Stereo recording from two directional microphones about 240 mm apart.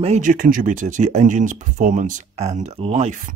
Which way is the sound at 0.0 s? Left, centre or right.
Right.